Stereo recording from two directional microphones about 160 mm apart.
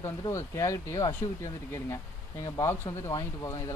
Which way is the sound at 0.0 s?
15° left (ahead or behind).